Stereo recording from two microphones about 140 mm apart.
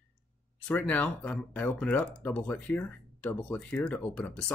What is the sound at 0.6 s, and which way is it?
Speech, 10° left (ahead or behind).